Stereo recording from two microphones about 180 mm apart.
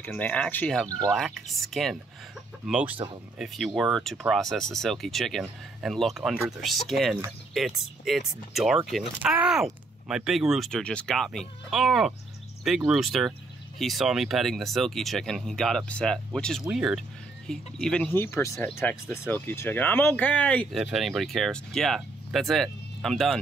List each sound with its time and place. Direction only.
0.1 s speech: 5° left (ahead or behind)
0.8 s speech: 20° right (ahead or behind)
1.1 s speech: centre (ahead or behind)